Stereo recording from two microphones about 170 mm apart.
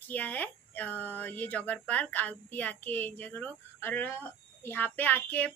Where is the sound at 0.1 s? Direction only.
10° left (ahead or behind).